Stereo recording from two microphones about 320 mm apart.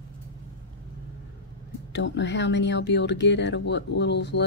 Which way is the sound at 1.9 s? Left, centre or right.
Left.